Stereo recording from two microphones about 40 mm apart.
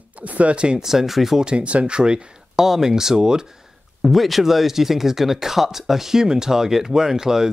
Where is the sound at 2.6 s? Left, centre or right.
Centre.